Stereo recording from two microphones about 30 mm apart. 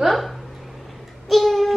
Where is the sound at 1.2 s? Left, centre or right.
Centre.